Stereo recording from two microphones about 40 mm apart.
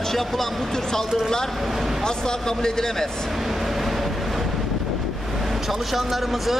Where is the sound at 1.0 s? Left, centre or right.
Centre.